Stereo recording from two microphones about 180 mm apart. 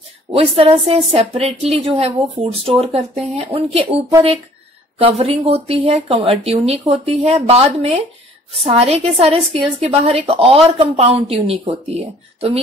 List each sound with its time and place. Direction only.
0.3 s a woman's voice: 30° right (ahead or behind)